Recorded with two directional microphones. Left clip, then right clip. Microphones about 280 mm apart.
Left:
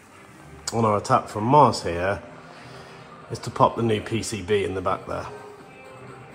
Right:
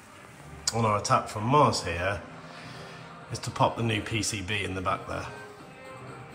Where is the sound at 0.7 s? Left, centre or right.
Centre.